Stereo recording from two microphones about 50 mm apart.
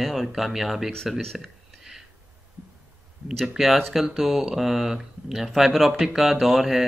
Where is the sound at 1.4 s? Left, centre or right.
Centre.